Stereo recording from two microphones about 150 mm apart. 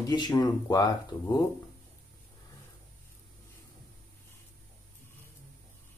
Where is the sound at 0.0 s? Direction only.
25° left (ahead or behind).